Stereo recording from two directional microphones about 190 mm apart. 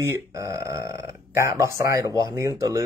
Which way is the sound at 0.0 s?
15° right (ahead or behind).